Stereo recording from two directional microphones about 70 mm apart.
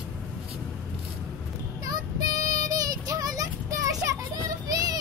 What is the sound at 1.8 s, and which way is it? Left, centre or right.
Child singing, right.